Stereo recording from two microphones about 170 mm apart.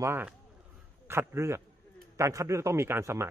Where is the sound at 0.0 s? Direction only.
15° right (ahead or behind).